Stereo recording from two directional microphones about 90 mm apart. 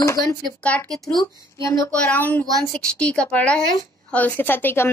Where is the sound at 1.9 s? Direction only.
15° left (ahead or behind).